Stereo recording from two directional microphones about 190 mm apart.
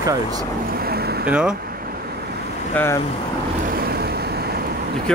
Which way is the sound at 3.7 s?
50° right (ahead or behind).